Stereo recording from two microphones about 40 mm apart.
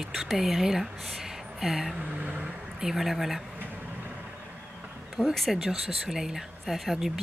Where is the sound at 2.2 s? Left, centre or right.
Right.